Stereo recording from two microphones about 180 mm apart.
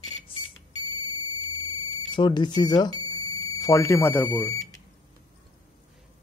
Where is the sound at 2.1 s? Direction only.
25° left (ahead or behind).